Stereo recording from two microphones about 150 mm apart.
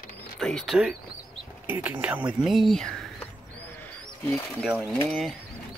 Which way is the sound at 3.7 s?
10° left (ahead or behind).